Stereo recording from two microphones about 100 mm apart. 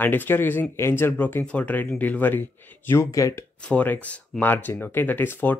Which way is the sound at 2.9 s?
30° left (ahead or behind).